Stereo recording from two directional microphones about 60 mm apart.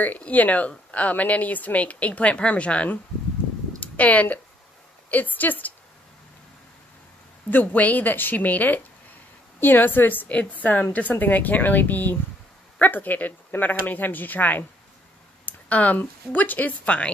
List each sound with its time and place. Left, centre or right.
0.0 s speech: left
7.5 s speech: left